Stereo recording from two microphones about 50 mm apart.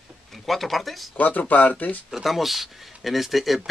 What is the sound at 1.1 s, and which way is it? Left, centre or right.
Speech, left.